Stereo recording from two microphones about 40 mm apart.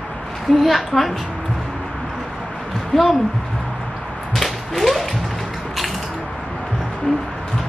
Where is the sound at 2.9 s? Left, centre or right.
Centre.